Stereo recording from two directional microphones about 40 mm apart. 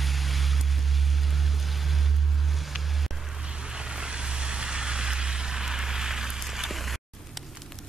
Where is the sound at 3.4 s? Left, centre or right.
Right.